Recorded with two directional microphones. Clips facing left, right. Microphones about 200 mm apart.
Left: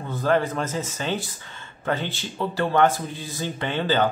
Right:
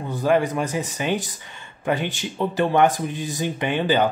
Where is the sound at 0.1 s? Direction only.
15° right (ahead or behind).